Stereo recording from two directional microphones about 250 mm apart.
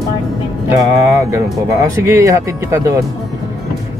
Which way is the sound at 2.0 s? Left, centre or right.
Centre.